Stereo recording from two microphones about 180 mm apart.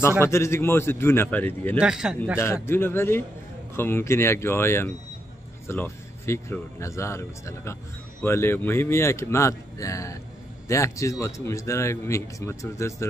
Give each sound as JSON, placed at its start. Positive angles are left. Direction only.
{"t": 0.2, "sound": "a man's voice", "side_deg": 15}
{"t": 1.8, "sound": "a man's voice", "side_deg": -5}
{"t": 2.3, "sound": "a man's voice", "side_deg": 15}